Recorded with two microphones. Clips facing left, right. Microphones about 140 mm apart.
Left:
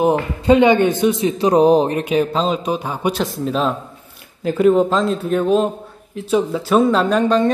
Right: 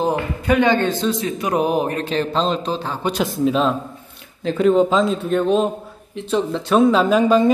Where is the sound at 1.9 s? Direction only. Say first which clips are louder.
Left 4 dB; 15° left (ahead or behind).